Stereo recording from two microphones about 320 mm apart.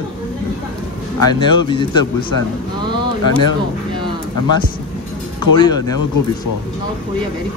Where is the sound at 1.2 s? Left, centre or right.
Centre.